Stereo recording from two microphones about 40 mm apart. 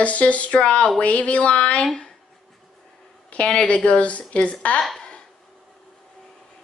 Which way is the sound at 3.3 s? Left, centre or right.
Left.